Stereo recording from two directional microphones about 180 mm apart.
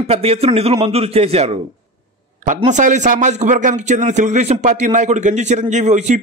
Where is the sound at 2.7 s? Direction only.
40° right (ahead or behind).